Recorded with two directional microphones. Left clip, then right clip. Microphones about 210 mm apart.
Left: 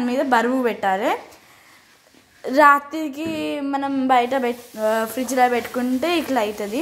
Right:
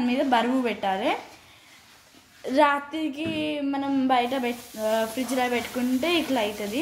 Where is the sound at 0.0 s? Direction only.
20° left (ahead or behind).